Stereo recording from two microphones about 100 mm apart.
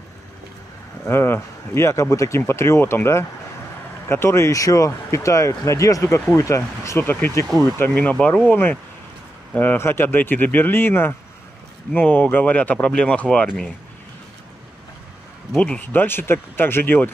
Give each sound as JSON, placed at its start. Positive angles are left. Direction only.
{"t": 1.0, "sound": "speech", "side_deg": 25}
{"t": 15.5, "sound": "speech", "side_deg": 10}